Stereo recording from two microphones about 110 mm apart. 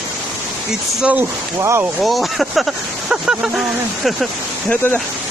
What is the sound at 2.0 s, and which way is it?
Speech, centre (ahead or behind).